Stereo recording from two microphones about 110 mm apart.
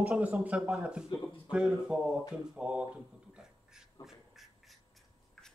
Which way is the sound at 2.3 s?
5° right (ahead or behind).